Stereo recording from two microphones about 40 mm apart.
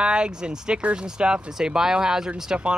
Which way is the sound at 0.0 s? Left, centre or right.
Right.